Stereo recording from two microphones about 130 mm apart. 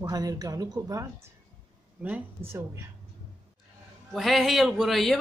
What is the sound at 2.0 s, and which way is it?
Speech, 15° right (ahead or behind).